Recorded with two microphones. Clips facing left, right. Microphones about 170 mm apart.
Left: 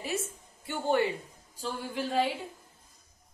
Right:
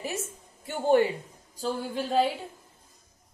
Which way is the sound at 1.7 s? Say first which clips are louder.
Right 4 dB; 35° right (ahead or behind).